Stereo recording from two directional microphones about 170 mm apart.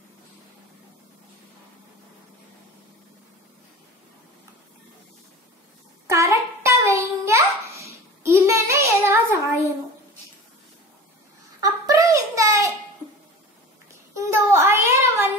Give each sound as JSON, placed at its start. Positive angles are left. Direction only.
{"t": 6.0, "sound": "a sound", "side_deg": -15}
{"t": 11.8, "sound": "child singing", "side_deg": -20}
{"t": 14.1, "sound": "child singing", "side_deg": -15}